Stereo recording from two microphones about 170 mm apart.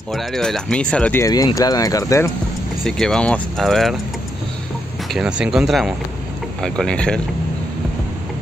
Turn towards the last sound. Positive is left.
turn(degrees=5)  # may be behind; listen again after turning